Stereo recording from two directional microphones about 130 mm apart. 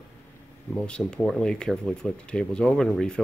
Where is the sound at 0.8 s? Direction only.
5° left (ahead or behind).